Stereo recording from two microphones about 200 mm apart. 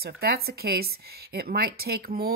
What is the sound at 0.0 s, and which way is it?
A woman's voice, 50° right (ahead or behind).